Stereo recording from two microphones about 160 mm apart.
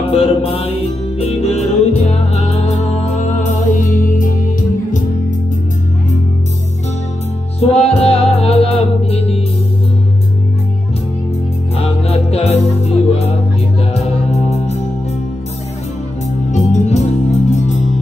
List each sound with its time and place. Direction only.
0.1 s music: 40° left (ahead or behind); by 5.0 s 55° left (ahead or behind)
7.6 s music: 40° left (ahead or behind)
11.7 s music: 40° left (ahead or behind)
16.5 s music: 45° left (ahead or behind)